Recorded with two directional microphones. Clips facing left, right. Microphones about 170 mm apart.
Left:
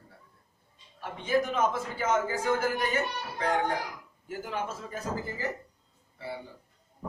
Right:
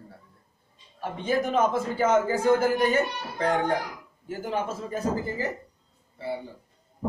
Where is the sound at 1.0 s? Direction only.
35° right (ahead or behind).